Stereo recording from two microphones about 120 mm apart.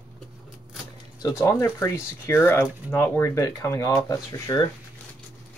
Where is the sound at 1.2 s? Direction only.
20° left (ahead or behind).